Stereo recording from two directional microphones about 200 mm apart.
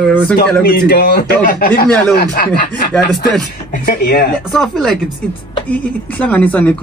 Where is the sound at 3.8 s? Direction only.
50° left (ahead or behind).